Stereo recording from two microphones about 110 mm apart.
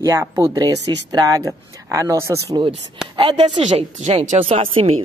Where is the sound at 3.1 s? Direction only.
45° right (ahead or behind).